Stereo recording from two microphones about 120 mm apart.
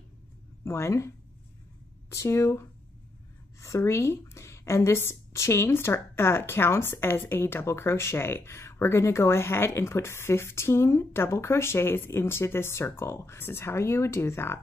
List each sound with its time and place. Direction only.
0.7 s speech: 20° left (ahead or behind)
3.6 s speech: 20° left (ahead or behind)